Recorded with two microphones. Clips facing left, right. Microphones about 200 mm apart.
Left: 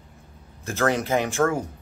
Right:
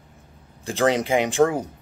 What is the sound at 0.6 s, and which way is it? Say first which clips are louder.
Speech: right 3 dB; 15° right (ahead or behind).